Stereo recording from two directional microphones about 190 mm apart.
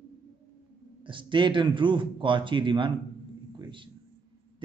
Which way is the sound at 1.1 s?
25° right (ahead or behind).